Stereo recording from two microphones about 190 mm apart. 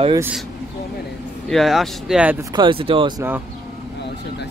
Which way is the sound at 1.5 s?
Centre (ahead or behind).